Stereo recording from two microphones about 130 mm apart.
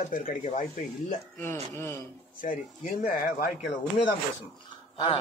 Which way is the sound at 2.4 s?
90° left.